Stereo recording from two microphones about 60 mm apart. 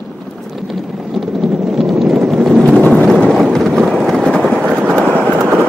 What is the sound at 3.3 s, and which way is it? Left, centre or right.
Vehicle, centre.